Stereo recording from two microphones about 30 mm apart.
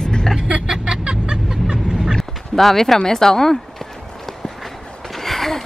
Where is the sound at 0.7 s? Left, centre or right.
Right.